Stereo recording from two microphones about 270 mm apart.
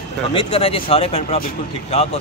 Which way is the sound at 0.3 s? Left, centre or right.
Centre.